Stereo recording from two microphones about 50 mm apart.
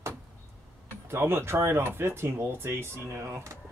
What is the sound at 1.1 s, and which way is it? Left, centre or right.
Speech, right.